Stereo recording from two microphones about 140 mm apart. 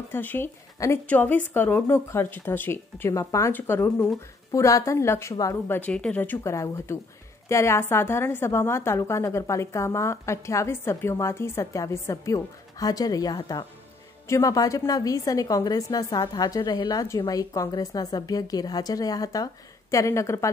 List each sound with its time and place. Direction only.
0.1 s a woman's voice: 15° left (ahead or behind)
5.8 s a woman's voice: 10° left (ahead or behind)